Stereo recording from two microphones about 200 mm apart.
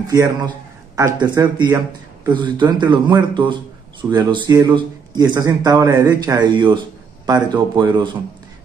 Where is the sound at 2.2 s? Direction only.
20° right (ahead or behind).